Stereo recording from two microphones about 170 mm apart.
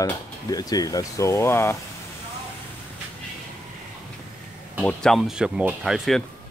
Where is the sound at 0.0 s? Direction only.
20° left (ahead or behind).